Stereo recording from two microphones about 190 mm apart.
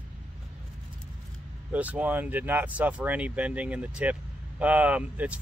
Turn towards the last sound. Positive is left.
turn(degrees=-5)  # may be behind; listen again after turning